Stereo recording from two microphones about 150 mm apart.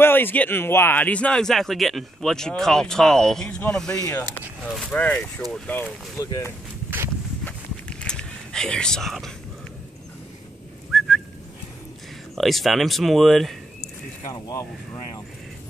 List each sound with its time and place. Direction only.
0.0 s speech: 15° left (ahead or behind)
4.0 s speech: 20° left (ahead or behind)
4.6 s speech: centre (ahead or behind)
6.2 s speech: 20° left (ahead or behind)
7.4 s whispering: 5° left (ahead or behind)
10.9 s whistling: centre (ahead or behind)
12.4 s speech: centre (ahead or behind)
14.3 s speech: 20° left (ahead or behind)